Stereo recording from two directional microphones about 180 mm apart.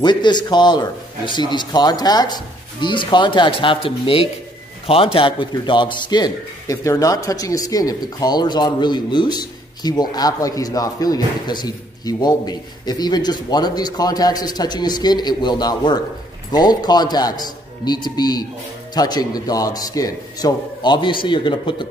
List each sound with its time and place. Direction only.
0.0 s a man's voice: 25° left (ahead or behind)